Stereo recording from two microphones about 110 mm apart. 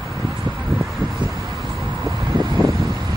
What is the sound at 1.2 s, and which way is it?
Vehicle, 45° right (ahead or behind).